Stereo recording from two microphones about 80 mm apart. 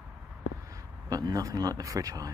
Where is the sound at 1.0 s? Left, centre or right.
Right.